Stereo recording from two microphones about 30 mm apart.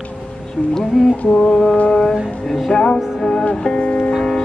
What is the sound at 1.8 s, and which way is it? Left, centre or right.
Music, centre.